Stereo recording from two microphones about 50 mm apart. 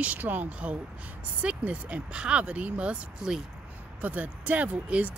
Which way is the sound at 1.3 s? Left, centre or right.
Right.